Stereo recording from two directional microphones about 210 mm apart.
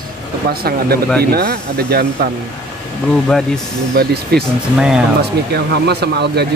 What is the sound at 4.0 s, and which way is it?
Speech, 45° right (ahead or behind).